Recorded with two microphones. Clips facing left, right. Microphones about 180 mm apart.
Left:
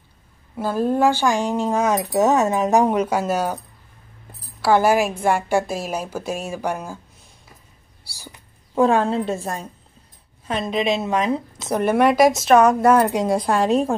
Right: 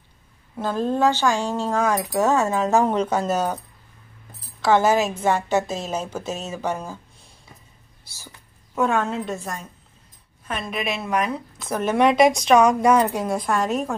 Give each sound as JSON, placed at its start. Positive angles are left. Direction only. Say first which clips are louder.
{"t": 0.6, "sound": "speech", "louder": "left 2 dB", "side_deg": 10}
{"t": 4.6, "sound": "a woman's voice", "louder": "left 1 dB", "side_deg": 10}
{"t": 8.0, "sound": "whispering", "louder": "left 4 dB", "side_deg": 15}
{"t": 8.7, "sound": "a woman's voice", "louder": "left 5 dB", "side_deg": 30}
{"t": 13.1, "sound": "a woman's voice", "louder": "left 4 dB", "side_deg": 30}